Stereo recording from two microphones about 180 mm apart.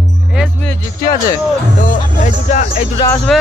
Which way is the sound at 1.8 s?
40° left (ahead or behind).